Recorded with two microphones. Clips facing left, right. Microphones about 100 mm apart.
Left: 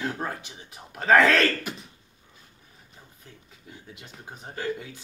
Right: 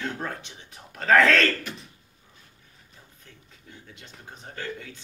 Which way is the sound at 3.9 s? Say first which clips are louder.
Left 3 dB; 10° left (ahead or behind).